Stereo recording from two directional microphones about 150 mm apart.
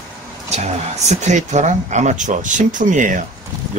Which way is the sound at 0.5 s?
50° right (ahead or behind).